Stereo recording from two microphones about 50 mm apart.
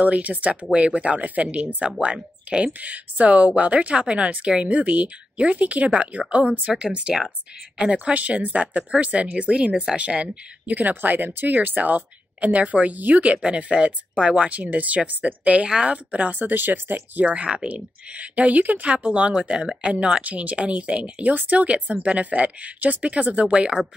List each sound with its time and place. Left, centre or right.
0.0 s speech: right
14.5 s speech: right
17.3 s speech: right
23.4 s speech: centre